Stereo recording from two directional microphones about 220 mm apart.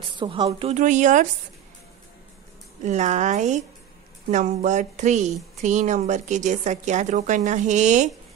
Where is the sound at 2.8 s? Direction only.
30° right (ahead or behind).